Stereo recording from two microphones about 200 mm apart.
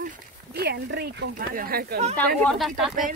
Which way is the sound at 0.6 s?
55° right (ahead or behind).